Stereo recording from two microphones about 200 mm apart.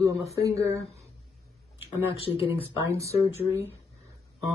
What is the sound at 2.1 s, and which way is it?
Speech, 30° left (ahead or behind).